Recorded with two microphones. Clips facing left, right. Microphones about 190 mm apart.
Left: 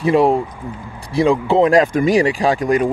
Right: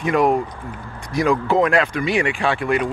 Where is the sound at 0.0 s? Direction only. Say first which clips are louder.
Left 4 dB; 30° left (ahead or behind).